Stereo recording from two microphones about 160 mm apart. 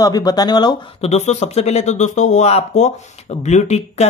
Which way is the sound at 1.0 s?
45° left (ahead or behind).